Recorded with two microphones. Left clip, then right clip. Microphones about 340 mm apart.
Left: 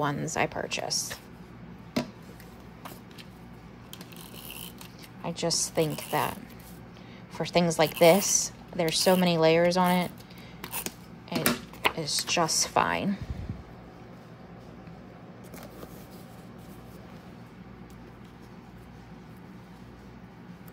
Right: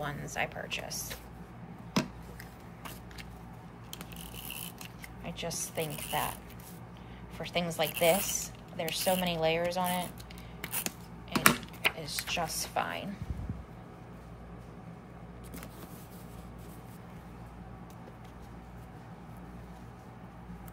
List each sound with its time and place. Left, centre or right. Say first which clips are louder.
0.0 s speech: left 7 dB; centre
5.2 s speech: left 9 dB; centre
7.3 s a woman's voice: left 8 dB; centre
11.8 s speech: left 6 dB; centre